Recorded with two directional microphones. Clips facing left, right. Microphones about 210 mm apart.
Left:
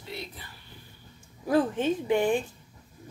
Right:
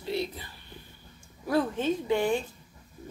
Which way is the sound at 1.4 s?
15° left (ahead or behind).